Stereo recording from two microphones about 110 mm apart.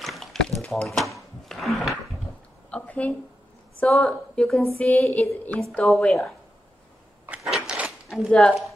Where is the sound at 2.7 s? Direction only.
10° left (ahead or behind).